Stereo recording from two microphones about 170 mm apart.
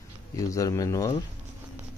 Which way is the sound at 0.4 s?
20° left (ahead or behind).